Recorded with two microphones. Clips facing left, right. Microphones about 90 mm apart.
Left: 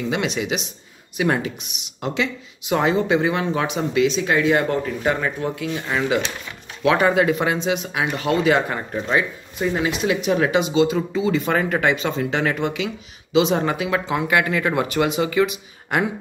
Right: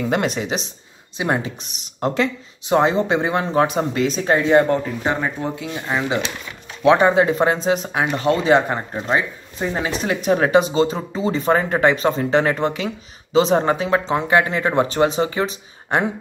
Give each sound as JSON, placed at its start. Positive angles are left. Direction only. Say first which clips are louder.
{"t": 0.0, "sound": "speech", "louder": "right 3 dB", "side_deg": -45}
{"t": 1.1, "sound": "speech", "louder": "left 1 dB", "side_deg": -25}